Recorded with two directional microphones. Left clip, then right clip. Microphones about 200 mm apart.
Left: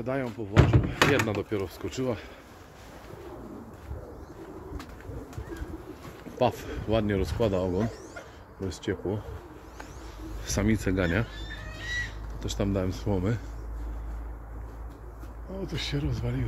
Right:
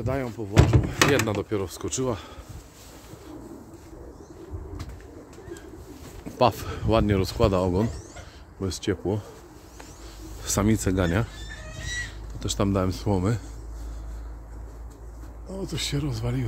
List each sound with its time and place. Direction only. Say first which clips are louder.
0.0 s speech: right 2 dB; 30° right (ahead or behind)
6.3 s speech: right 5 dB; 50° right (ahead or behind)
10.5 s speech: right 3 dB; 35° right (ahead or behind)
11.4 s fowl: even; 60° right (ahead or behind)
12.5 s speech: right 4 dB; 50° right (ahead or behind)
15.7 s speech: right 3 dB; 45° right (ahead or behind)